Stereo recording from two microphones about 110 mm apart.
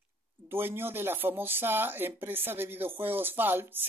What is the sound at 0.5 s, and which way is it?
Speech, 20° right (ahead or behind).